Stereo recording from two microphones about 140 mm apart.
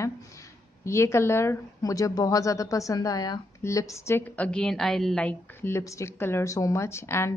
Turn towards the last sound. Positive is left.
turn(degrees=20)  # may be behind; listen again after turning